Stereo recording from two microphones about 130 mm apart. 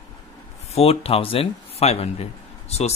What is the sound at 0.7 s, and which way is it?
Speech, 50° left (ahead or behind).